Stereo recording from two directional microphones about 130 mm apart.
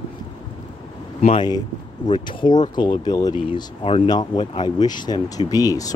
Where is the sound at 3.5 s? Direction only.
45° left (ahead or behind).